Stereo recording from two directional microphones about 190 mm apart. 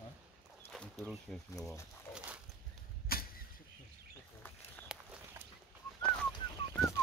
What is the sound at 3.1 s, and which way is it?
Vehicle, 50° left (ahead or behind).